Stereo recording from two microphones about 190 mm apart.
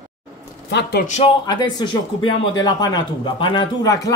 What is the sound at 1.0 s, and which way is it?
Speech, 35° left (ahead or behind).